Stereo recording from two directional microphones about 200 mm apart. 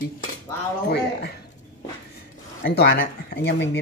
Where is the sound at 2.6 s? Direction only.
50° left (ahead or behind).